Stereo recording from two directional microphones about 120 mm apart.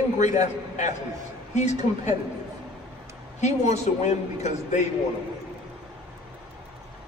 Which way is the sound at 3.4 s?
75° left (ahead or behind).